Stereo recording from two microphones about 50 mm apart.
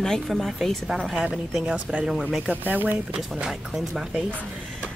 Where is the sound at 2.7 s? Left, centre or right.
Right.